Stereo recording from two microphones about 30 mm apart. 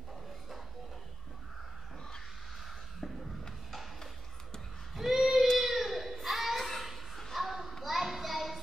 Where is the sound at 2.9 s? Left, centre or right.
Centre.